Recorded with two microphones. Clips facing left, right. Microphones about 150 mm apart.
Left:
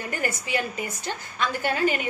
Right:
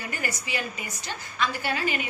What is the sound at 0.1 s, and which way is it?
A woman's voice, 45° left (ahead or behind).